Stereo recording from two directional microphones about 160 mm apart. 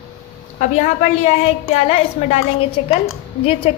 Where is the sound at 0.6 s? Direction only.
50° left (ahead or behind).